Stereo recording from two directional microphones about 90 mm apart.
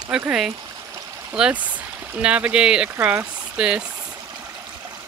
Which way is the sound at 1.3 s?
15° right (ahead or behind).